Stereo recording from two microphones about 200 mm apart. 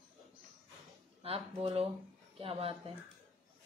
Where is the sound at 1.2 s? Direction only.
30° right (ahead or behind).